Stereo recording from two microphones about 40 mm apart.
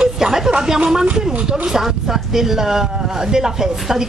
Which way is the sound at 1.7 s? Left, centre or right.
Centre.